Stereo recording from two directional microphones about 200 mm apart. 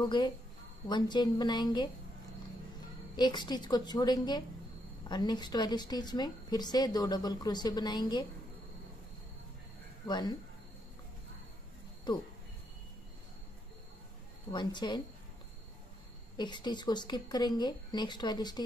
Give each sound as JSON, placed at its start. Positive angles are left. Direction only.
{"t": 0.0, "sound": "a woman's voice", "side_deg": 25}
{"t": 3.2, "sound": "a woman's voice", "side_deg": 20}
{"t": 10.0, "sound": "a woman's voice", "side_deg": 20}
{"t": 12.1, "sound": "a woman's voice", "side_deg": 25}
{"t": 14.5, "sound": "a woman's voice", "side_deg": 20}
{"t": 16.3, "sound": "a woman's voice", "side_deg": 20}